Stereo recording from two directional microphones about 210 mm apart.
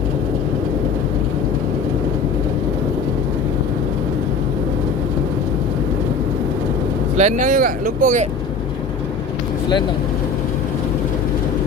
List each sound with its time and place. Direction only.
7.2 s speech: 35° right (ahead or behind)